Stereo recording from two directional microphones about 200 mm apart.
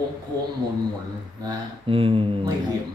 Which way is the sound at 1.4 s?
25° right (ahead or behind).